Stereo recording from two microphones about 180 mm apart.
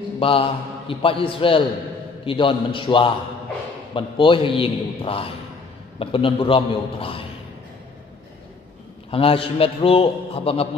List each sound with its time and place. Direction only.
0.2 s a man's voice: 30° left (ahead or behind)
9.1 s a man's voice: 30° left (ahead or behind)